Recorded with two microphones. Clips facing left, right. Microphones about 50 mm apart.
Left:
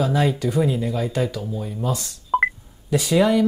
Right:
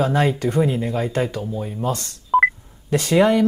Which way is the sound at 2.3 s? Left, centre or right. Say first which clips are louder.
Right 4 dB; centre.